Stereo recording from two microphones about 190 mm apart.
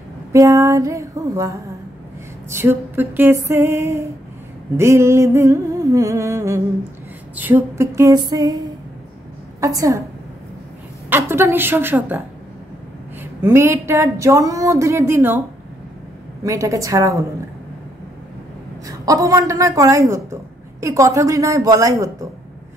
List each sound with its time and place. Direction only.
0.3 s a sound: 15° right (ahead or behind)
2.5 s speech: 10° right (ahead or behind)
9.6 s speech: 15° right (ahead or behind)
11.1 s speech: 10° right (ahead or behind)
13.2 s speech: 15° right (ahead or behind)
16.4 s speech: 15° right (ahead or behind)
18.9 s speech: 20° right (ahead or behind)